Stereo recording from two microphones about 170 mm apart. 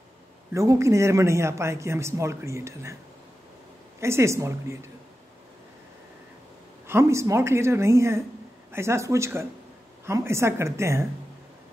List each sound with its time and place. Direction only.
0.6 s speech: 15° right (ahead or behind)
4.0 s speech: 15° right (ahead or behind)
6.9 s speech: 15° right (ahead or behind)